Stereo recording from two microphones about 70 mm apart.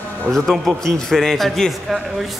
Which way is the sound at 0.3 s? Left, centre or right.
Centre.